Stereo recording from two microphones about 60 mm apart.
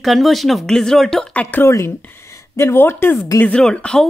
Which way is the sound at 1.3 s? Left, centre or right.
Left.